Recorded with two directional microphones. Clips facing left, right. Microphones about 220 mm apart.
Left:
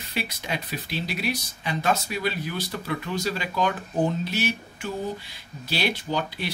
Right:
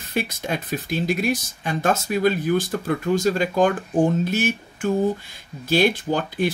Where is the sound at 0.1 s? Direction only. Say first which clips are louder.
Right 6 dB; 45° right (ahead or behind).